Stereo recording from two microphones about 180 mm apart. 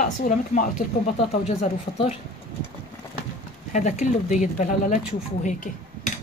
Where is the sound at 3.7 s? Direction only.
45° left (ahead or behind).